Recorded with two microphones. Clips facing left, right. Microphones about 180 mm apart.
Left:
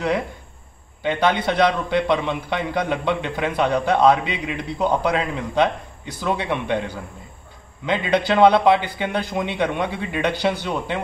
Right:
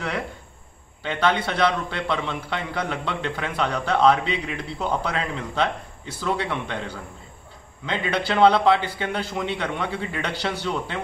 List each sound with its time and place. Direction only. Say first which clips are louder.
1.0 s a man's voice: left 3 dB; 15° left (ahead or behind)
7.8 s a man's voice: left 5 dB; 15° left (ahead or behind)